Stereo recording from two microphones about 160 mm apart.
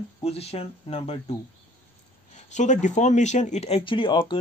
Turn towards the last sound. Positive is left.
turn(degrees=30)  # may be behind; listen again after turning